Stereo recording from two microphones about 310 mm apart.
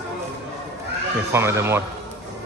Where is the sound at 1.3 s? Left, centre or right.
Centre.